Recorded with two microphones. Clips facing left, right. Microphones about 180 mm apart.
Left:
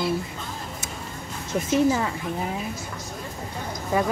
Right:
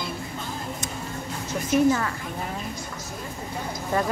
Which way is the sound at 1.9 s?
15° left (ahead or behind).